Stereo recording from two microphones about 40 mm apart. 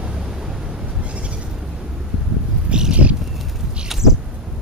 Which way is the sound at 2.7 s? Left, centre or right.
Right.